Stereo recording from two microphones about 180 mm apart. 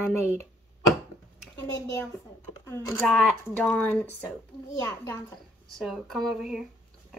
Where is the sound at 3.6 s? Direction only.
10° left (ahead or behind).